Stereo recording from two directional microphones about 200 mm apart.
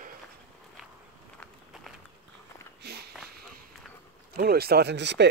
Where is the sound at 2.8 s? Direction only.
50° right (ahead or behind).